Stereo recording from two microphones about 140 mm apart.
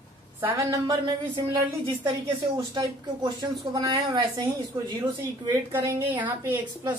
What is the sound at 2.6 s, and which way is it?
Speech, 30° right (ahead or behind).